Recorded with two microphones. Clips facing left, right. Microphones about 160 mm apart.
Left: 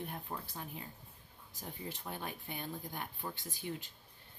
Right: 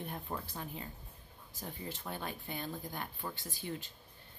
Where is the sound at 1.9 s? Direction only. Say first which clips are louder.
Right 1 dB; 15° left (ahead or behind).